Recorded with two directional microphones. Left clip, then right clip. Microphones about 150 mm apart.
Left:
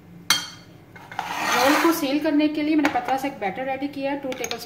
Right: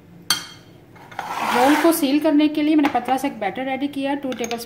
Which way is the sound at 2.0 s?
55° right (ahead or behind).